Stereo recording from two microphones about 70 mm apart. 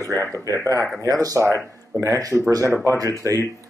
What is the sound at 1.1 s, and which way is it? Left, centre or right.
Speech, right.